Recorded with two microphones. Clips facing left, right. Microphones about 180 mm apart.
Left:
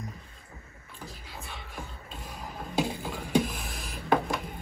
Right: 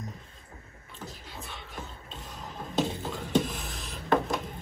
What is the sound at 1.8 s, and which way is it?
Music, 5° left (ahead or behind).